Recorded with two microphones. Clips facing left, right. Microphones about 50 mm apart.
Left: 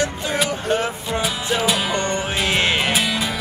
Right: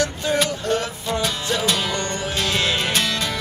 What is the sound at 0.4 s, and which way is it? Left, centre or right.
Music, centre.